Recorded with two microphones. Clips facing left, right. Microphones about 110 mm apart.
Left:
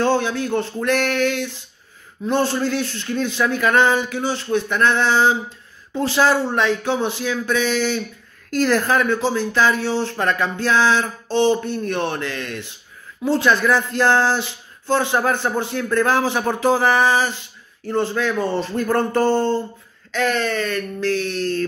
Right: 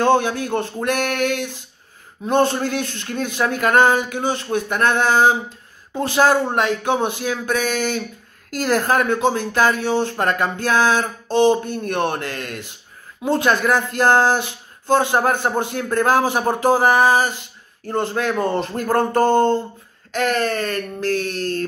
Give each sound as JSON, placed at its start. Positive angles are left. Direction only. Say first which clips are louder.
{"t": 0.0, "sound": "speech", "louder": "right 2 dB", "side_deg": -50}